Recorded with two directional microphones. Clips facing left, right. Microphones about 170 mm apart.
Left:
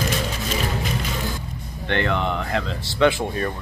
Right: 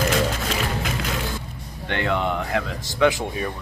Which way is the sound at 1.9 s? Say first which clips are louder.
Left 1 dB; 15° right (ahead or behind).